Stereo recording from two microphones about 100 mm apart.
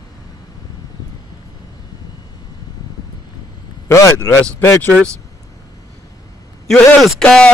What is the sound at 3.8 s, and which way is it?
Speech, 30° left (ahead or behind).